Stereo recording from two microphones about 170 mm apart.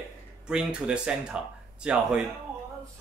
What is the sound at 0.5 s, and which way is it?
Speech, 5° right (ahead or behind).